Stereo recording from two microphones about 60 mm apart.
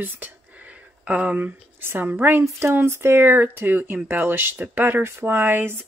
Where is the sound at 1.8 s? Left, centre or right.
Right.